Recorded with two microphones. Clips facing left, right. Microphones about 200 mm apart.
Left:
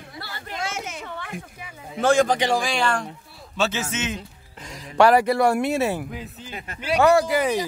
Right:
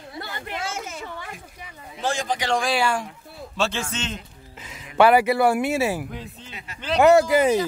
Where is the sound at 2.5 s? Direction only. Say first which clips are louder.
Even; centre (ahead or behind).